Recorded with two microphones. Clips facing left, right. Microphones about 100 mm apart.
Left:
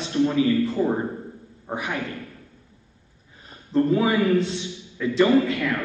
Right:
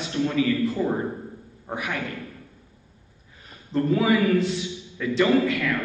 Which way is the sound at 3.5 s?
30° left (ahead or behind).